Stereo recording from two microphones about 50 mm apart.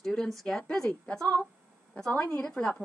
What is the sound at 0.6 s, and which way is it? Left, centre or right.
A woman's voice, centre.